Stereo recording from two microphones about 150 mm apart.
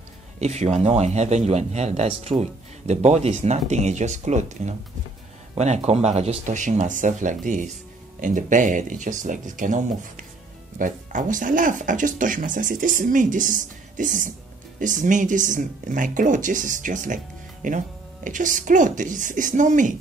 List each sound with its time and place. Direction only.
0.4 s speech: 45° right (ahead or behind)